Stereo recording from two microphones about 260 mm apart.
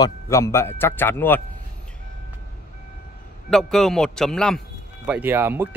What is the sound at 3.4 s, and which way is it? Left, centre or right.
A man's voice, centre.